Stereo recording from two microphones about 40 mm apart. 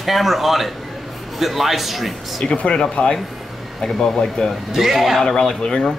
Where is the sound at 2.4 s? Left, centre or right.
Left.